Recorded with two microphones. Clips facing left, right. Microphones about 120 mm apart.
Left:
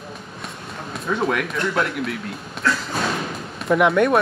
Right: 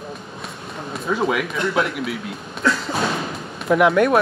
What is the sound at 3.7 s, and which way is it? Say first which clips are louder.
Speech: right 1 dB; centre (ahead or behind).